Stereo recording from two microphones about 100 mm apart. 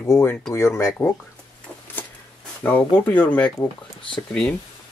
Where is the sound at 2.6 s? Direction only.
20° left (ahead or behind).